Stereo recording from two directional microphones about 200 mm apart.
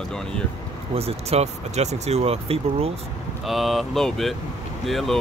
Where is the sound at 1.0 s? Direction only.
30° right (ahead or behind).